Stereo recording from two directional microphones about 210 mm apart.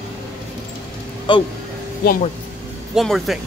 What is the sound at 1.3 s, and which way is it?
Speech, 20° left (ahead or behind).